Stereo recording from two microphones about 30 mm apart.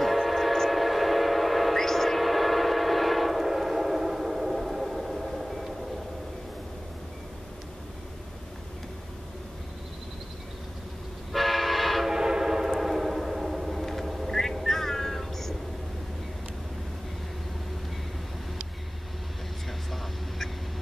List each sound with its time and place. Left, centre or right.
0.0 s train: centre
1.8 s train: centre
11.3 s train: centre
12.1 s train: centre
14.2 s meow: centre